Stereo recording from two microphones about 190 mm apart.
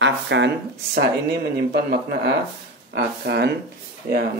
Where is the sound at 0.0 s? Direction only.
70° right (ahead or behind).